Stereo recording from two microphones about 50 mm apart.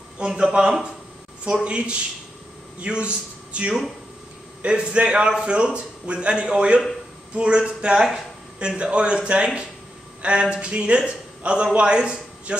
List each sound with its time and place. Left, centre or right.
0.2 s a man's voice: centre